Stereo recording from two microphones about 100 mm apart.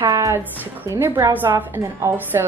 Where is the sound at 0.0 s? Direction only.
35° right (ahead or behind).